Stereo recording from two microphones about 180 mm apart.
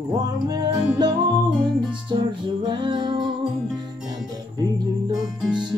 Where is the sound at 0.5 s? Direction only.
20° right (ahead or behind).